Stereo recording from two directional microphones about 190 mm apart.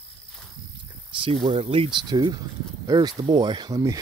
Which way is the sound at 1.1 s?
25° right (ahead or behind).